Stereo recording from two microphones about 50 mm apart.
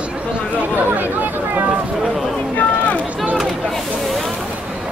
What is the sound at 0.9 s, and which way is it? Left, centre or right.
Speech, right.